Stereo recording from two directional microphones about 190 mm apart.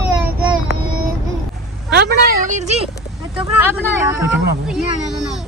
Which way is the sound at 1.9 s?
55° right (ahead or behind).